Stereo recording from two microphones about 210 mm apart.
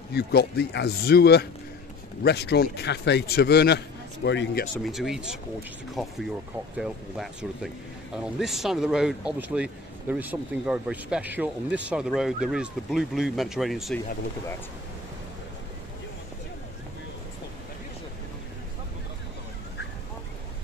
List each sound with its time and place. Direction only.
0.1 s a man's voice: 50° left (ahead or behind)
4.7 s speech: centre (ahead or behind)